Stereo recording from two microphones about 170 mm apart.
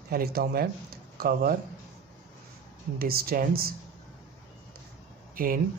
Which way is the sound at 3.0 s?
60° right (ahead or behind).